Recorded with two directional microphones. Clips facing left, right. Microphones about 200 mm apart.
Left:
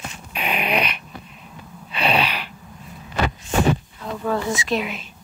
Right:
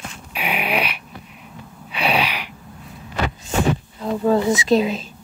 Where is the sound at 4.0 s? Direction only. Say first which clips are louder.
Right 9 dB; 25° right (ahead or behind).